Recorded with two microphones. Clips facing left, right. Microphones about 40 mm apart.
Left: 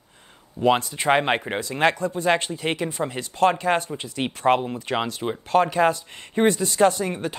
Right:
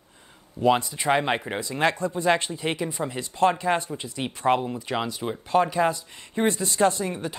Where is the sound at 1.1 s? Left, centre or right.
Left.